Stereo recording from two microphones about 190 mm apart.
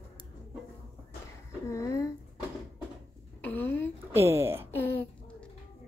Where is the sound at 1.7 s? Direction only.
15° left (ahead or behind).